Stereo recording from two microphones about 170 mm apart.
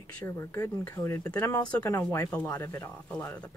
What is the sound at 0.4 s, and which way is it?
Speech, 15° left (ahead or behind).